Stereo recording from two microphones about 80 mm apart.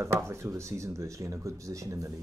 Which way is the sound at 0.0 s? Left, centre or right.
Right.